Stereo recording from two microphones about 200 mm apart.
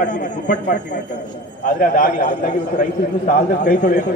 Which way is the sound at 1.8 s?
45° left (ahead or behind).